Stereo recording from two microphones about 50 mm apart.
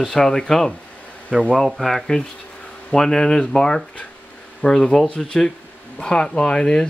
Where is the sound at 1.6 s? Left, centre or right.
Centre.